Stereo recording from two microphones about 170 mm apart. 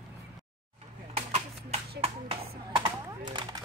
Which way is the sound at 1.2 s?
40° right (ahead or behind).